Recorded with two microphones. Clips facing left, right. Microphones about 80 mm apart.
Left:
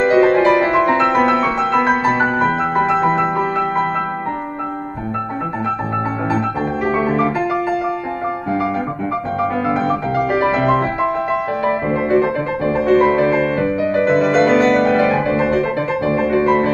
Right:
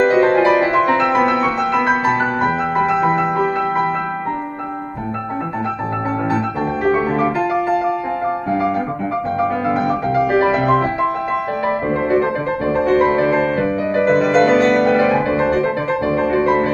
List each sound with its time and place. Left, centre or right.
0.1 s music: centre
0.4 s music: centre
6.8 s music: centre
10.4 s music: centre